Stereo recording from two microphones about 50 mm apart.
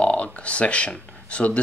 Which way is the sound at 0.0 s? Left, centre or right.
Left.